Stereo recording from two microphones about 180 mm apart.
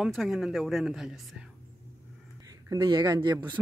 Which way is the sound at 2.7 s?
25° right (ahead or behind).